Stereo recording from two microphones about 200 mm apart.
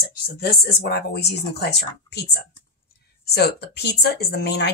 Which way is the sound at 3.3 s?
50° left (ahead or behind).